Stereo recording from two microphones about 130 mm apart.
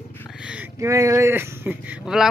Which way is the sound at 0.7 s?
25° right (ahead or behind).